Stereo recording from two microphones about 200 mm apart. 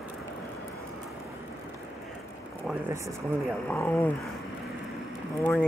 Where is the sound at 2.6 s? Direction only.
10° right (ahead or behind).